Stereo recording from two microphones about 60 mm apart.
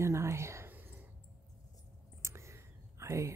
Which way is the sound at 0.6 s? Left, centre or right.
Right.